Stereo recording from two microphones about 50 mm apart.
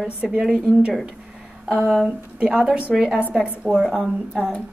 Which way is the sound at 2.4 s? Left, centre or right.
Centre.